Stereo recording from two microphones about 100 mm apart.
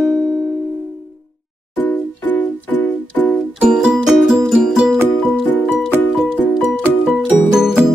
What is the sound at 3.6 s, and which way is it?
Music, 10° right (ahead or behind).